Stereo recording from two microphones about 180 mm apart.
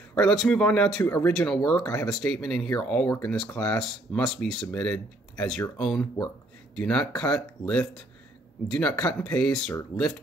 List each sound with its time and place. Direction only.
0.1 s speech: 5° left (ahead or behind)
1.8 s speech: 20° left (ahead or behind)
2.0 s speech: centre (ahead or behind)